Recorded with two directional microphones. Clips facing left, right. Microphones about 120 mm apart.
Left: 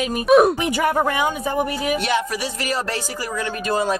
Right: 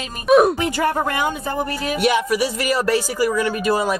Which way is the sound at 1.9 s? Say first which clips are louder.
Right 4 dB; 10° right (ahead or behind).